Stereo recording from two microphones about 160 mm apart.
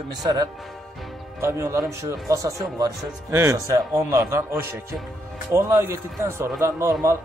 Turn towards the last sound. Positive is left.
turn(degrees=-20)  # may be behind; listen again after turning